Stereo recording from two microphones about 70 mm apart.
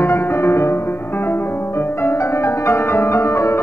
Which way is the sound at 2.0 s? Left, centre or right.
Left.